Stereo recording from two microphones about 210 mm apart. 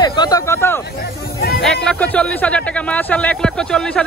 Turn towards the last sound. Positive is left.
turn(degrees=5)  # may be behind; listen again after turning